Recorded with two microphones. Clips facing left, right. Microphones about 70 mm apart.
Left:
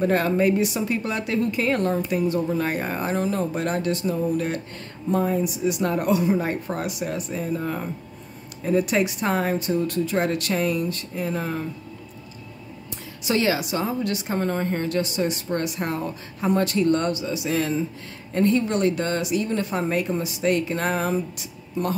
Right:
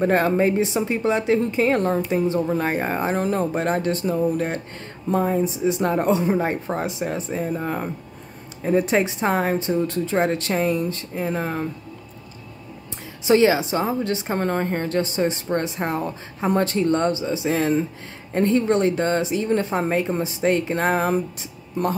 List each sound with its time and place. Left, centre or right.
0.0 s a woman's voice: right
3.2 s speech: right
5.1 s a woman's voice: right
13.2 s a woman's voice: right